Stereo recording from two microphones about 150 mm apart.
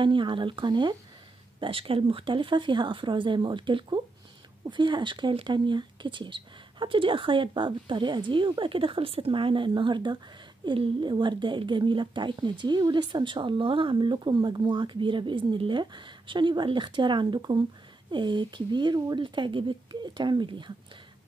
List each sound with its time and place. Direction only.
0.0 s speech: 35° right (ahead or behind)